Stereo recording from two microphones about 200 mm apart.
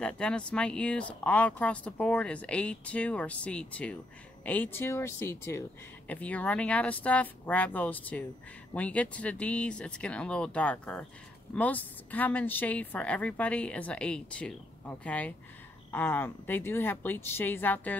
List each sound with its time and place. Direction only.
0.0 s a woman's voice: 5° left (ahead or behind)